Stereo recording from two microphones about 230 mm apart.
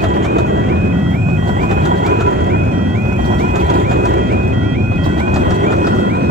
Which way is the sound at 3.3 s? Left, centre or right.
Right.